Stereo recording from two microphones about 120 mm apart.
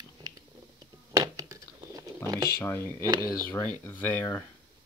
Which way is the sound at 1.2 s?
30° right (ahead or behind).